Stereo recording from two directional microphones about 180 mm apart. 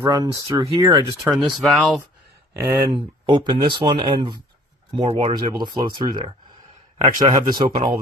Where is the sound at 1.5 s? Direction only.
Centre (ahead or behind).